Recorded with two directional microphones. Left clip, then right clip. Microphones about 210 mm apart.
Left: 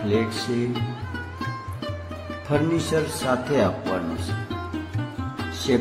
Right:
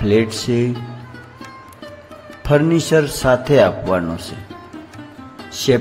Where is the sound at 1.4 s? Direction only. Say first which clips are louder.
Left 2 dB; centre (ahead or behind).